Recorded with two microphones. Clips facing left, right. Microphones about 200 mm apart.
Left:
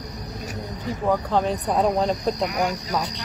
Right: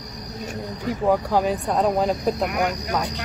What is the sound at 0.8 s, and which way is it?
A woman's voice, 10° right (ahead or behind).